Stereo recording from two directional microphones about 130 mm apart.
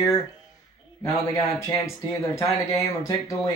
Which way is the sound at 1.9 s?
25° left (ahead or behind).